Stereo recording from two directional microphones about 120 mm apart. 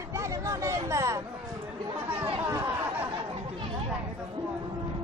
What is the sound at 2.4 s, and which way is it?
Chatter, 20° right (ahead or behind).